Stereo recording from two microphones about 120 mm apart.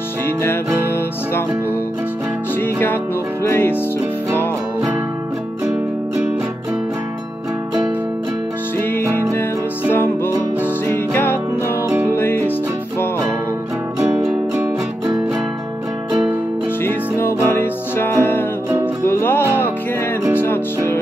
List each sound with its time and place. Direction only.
0.4 s music: 20° left (ahead or behind)
2.6 s music: 15° left (ahead or behind)
9.3 s music: 15° left (ahead or behind)
13.9 s music: 20° right (ahead or behind)
16.8 s music: 20° left (ahead or behind)